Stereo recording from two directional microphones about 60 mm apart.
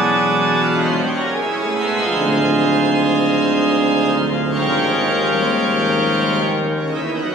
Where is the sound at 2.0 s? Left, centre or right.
Centre.